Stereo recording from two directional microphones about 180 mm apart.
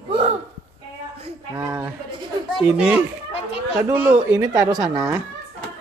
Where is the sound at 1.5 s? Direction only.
15° right (ahead or behind).